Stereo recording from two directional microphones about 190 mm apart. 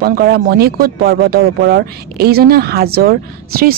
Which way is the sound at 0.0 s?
55° right (ahead or behind).